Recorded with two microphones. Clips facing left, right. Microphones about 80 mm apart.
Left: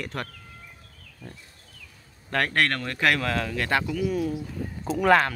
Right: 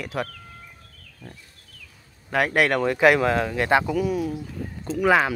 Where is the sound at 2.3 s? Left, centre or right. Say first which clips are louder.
Right 4 dB; centre.